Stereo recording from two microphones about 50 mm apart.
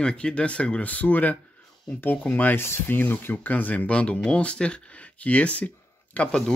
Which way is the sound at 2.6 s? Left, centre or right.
Left.